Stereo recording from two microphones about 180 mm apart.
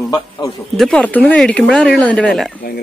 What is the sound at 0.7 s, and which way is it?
Speech, 5° left (ahead or behind).